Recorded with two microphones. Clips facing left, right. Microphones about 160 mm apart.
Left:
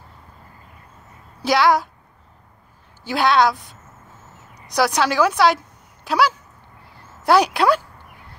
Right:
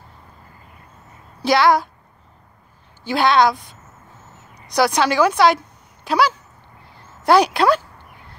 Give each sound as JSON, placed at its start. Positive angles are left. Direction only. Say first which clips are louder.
{"t": 1.4, "sound": "a woman's voice", "louder": "right 1 dB", "side_deg": 10}
{"t": 3.0, "sound": "a woman's voice", "louder": "right 1 dB", "side_deg": 5}
{"t": 4.7, "sound": "speech", "louder": "right 2 dB", "side_deg": 5}
{"t": 6.0, "sound": "a sound", "louder": "right 1 dB", "side_deg": 5}
{"t": 7.2, "sound": "a woman's voice", "louder": "right 1 dB", "side_deg": 5}